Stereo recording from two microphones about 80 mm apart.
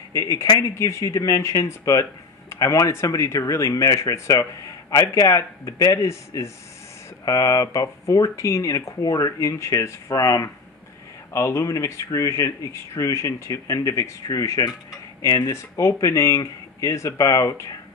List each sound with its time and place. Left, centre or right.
0.1 s speech: left